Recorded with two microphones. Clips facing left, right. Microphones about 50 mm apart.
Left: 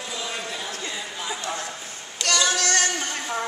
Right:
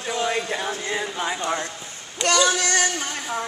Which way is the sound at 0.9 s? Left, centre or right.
Right.